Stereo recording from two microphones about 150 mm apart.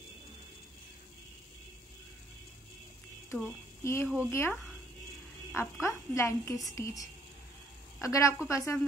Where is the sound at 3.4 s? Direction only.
15° left (ahead or behind).